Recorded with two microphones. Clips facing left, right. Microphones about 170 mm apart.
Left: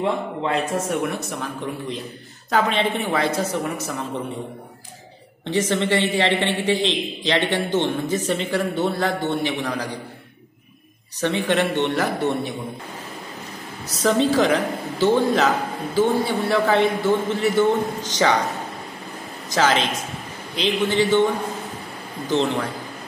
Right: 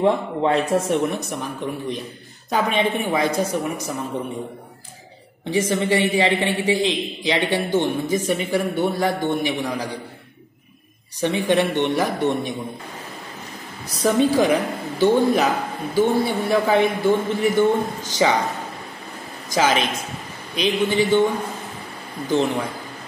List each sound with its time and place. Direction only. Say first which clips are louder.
0.0 s a man's voice: right 4 dB; 35° right (ahead or behind)
1.1 s a man's voice: right 1 dB; 15° right (ahead or behind)
5.4 s a man's voice: even; 10° right (ahead or behind)
11.1 s a man's voice: right 2 dB; 15° right (ahead or behind)
14.0 s a man's voice: right 1 dB; 10° right (ahead or behind)
19.5 s a man's voice: even; 15° right (ahead or behind)
22.3 s a man's voice: right 1 dB; 10° right (ahead or behind)